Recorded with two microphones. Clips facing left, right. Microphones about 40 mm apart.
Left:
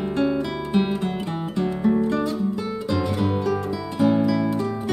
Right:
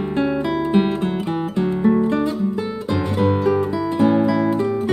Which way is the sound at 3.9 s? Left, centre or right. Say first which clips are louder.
Right 3 dB; centre.